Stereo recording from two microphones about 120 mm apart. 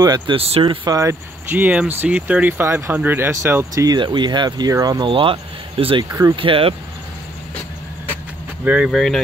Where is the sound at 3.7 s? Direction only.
35° right (ahead or behind).